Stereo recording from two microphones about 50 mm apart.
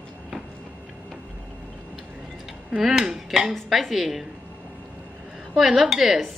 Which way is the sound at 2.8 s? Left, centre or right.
Centre.